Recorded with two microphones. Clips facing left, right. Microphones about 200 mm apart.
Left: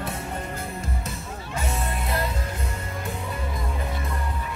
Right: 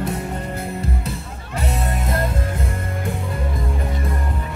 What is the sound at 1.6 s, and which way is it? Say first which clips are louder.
Music: right 5 dB; 35° right (ahead or behind).